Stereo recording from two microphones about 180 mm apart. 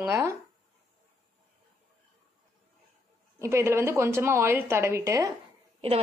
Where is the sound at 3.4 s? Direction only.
15° right (ahead or behind).